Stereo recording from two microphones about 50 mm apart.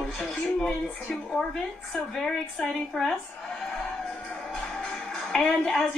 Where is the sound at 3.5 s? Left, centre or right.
Centre.